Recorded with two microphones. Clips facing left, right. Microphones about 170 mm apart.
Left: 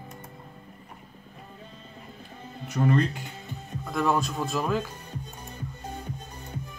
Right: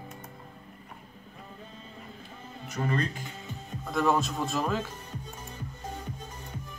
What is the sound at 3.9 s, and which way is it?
Speech, centre (ahead or behind).